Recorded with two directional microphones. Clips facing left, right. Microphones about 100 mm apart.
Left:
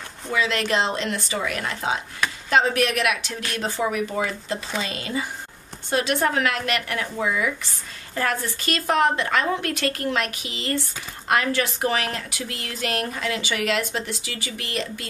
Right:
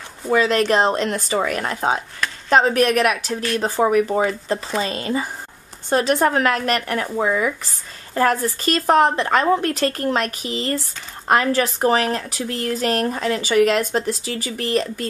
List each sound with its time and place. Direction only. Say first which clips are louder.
0.3 s speech: right 6 dB; 45° right (ahead or behind)